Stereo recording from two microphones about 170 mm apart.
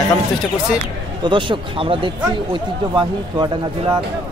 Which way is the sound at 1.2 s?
30° right (ahead or behind).